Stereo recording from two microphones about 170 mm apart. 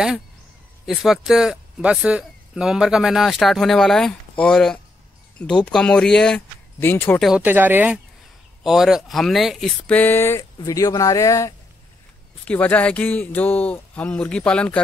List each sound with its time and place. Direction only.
0.8 s speech: centre (ahead or behind)
7.2 s speech: 5° right (ahead or behind); by 11.5 s 20° left (ahead or behind)
12.4 s speech: 10° left (ahead or behind)